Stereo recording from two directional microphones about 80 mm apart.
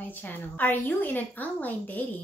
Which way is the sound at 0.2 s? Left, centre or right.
Left.